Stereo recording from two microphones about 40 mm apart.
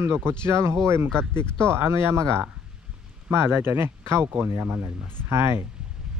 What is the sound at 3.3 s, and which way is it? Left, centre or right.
Speech, right.